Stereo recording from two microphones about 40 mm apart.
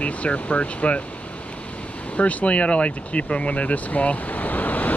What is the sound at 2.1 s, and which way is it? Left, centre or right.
Vehicle, left.